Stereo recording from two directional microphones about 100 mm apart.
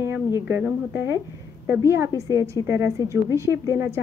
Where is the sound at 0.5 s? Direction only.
20° right (ahead or behind).